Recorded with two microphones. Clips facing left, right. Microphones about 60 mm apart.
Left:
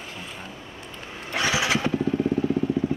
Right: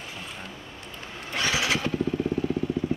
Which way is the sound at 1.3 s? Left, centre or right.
Centre.